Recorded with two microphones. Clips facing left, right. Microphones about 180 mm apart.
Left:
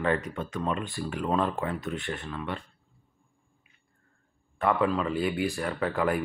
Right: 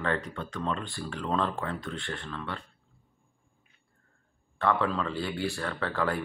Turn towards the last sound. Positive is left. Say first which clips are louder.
# left 3 dB
turn(degrees=15)  # may be behind; listen again after turning